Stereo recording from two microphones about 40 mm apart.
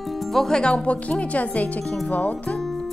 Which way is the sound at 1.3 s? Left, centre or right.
Left.